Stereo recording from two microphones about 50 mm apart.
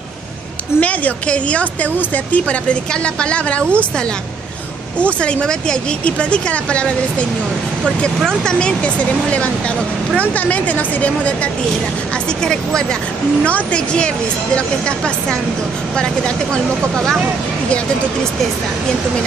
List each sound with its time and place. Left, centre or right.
0.7 s a woman's voice: left
5.2 s a woman's voice: centre
8.3 s a woman's voice: centre
13.4 s a woman's voice: left
16.9 s speech: centre